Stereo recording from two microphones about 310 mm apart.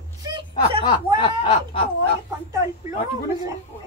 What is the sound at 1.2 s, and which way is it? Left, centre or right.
Speech, centre.